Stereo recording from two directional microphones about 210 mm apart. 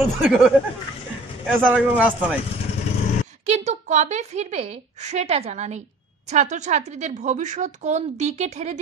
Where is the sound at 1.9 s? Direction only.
5° right (ahead or behind).